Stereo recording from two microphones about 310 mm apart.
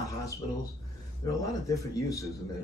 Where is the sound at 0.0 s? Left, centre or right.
Centre.